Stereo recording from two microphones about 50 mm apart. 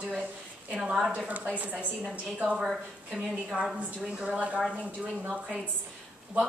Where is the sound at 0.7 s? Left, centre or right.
Centre.